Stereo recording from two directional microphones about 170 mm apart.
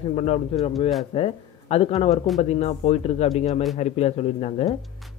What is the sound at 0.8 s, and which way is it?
Speech, centre (ahead or behind).